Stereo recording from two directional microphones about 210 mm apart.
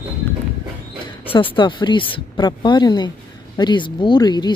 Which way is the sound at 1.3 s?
25° left (ahead or behind).